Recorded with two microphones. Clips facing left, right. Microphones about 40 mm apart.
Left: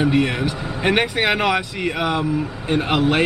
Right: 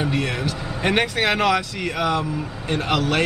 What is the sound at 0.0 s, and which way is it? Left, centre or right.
Speech, centre.